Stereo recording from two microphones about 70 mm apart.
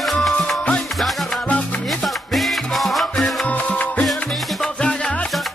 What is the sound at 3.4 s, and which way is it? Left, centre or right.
Music, left.